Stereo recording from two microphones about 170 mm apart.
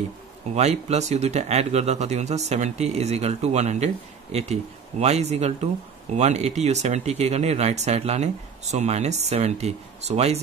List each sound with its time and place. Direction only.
0.6 s speech: 40° right (ahead or behind)